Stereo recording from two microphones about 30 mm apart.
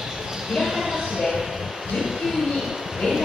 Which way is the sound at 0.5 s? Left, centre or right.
Centre.